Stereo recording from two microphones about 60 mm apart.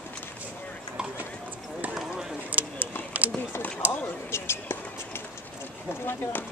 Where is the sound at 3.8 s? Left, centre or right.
Right.